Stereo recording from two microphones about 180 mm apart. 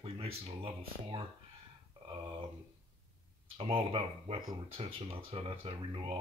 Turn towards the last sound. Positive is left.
turn(degrees=-30)  # may be behind; listen again after turning